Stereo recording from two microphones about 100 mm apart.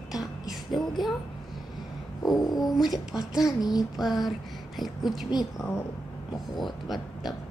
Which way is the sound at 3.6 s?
40° left (ahead or behind).